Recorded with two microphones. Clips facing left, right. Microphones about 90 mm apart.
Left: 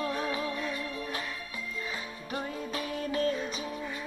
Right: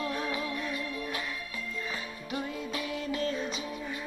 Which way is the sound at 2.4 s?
35° left (ahead or behind).